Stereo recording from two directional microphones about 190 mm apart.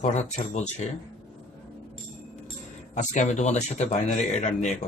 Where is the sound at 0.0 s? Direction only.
35° left (ahead or behind).